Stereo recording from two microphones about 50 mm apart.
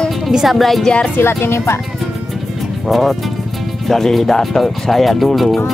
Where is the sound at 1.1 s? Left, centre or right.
Left.